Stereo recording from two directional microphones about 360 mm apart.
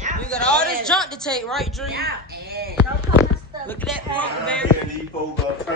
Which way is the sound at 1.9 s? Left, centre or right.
Right.